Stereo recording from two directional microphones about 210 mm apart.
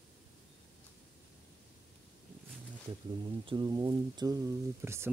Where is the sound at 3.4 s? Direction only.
20° right (ahead or behind).